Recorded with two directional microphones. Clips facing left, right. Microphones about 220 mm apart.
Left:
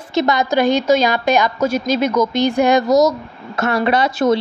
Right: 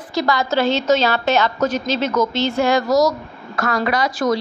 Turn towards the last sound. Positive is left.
turn(degrees=25)  # may be behind; listen again after turning